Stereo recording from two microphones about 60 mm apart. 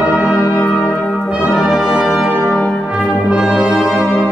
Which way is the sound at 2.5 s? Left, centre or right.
Left.